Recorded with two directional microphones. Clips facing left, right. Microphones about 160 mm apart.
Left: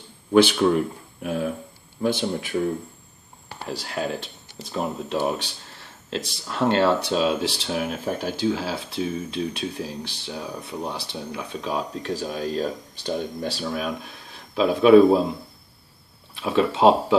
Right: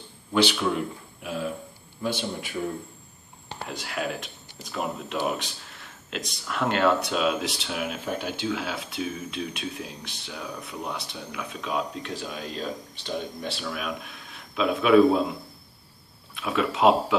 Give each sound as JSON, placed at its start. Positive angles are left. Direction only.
{"t": 0.3, "sound": "speech", "side_deg": 50}
{"t": 3.6, "sound": "speech", "side_deg": 35}
{"t": 16.3, "sound": "speech", "side_deg": 30}